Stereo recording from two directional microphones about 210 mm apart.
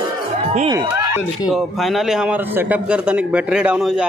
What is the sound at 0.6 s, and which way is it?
Speech, 15° right (ahead or behind).